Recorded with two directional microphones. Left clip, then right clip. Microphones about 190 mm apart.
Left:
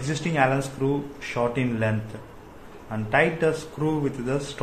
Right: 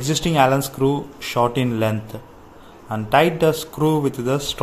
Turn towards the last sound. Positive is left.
turn(degrees=-30)  # may be behind; listen again after turning